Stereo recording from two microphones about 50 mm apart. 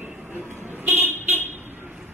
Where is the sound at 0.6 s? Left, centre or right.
Right.